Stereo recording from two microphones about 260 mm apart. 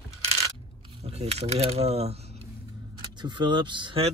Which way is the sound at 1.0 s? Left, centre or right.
Right.